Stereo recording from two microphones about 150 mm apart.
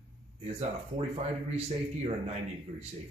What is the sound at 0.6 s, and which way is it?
Speech, 40° right (ahead or behind).